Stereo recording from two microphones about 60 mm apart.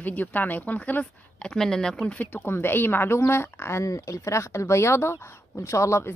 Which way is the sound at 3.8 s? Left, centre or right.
Left.